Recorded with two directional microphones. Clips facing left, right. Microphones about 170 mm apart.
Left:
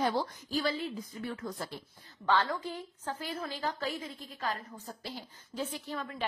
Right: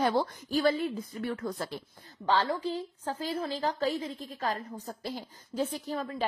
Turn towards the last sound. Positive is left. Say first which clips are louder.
# right 5 dB
turn(degrees=-40)  # may be behind; listen again after turning